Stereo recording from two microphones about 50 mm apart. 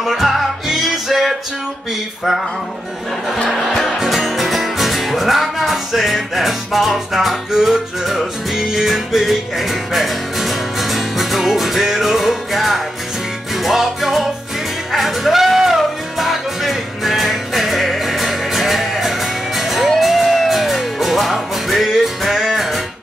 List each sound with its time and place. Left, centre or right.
0.0 s music: centre
3.4 s music: centre
7.5 s music: centre